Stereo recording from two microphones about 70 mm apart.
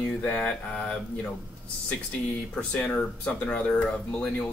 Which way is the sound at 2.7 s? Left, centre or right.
Centre.